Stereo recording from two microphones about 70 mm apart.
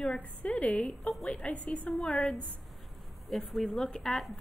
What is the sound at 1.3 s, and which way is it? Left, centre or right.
Speech, centre.